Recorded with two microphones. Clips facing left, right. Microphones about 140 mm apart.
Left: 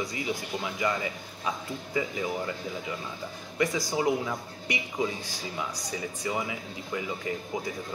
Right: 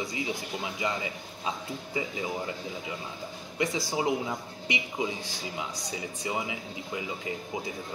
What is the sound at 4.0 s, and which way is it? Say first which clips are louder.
Speech: left 2 dB; 20° right (ahead or behind).